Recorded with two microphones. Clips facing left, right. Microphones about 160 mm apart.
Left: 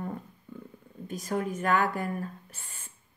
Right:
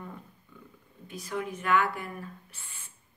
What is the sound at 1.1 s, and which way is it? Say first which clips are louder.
Speech: left 4 dB; 45° left (ahead or behind).